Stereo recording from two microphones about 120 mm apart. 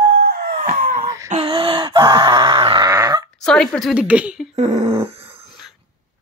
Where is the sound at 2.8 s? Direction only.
30° right (ahead or behind).